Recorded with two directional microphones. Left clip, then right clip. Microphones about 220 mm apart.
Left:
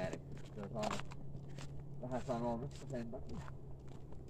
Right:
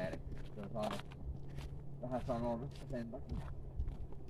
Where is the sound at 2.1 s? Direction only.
25° left (ahead or behind).